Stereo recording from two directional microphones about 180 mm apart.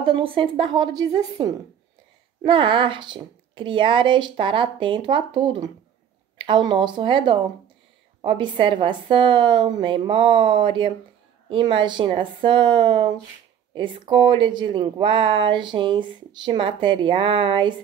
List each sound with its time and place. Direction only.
0.0 s speech: 30° right (ahead or behind)